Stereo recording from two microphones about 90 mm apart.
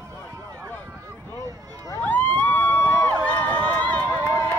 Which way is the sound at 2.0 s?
20° left (ahead or behind).